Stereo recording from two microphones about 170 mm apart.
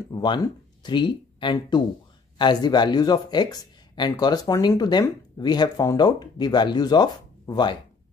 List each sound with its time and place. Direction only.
0.1 s speech: 25° left (ahead or behind)